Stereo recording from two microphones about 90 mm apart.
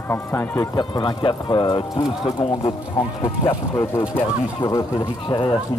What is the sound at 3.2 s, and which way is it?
Speech, 35° left (ahead or behind).